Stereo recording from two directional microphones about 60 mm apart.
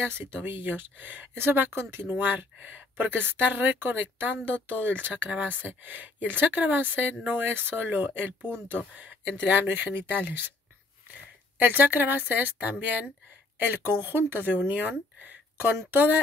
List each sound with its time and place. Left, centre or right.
0.0 s speech: right
11.5 s speech: right